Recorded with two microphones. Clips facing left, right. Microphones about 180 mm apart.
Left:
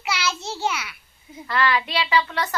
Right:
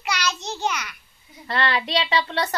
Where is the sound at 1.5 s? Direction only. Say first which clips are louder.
Left 1 dB; 30° right (ahead or behind).